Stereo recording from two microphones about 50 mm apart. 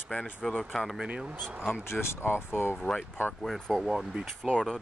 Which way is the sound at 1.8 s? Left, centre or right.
Left.